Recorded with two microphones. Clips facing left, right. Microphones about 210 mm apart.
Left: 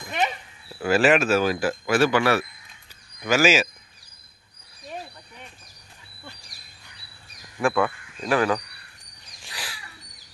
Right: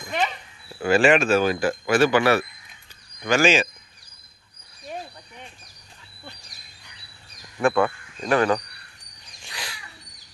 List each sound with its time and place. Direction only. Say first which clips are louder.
0.8 s speech: right 1 dB; 5° left (ahead or behind)
2.0 s speech: right 3 dB; 25° right (ahead or behind)
3.2 s speech: even; 5° left (ahead or behind)
7.6 s speech: right 2 dB; centre (ahead or behind)
9.4 s a sound: right 1 dB; 5° left (ahead or behind)